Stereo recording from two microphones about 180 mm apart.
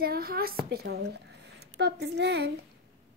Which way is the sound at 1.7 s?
70° right (ahead or behind).